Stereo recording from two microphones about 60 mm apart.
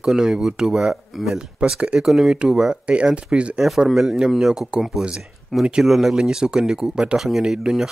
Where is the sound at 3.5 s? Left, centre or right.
Centre.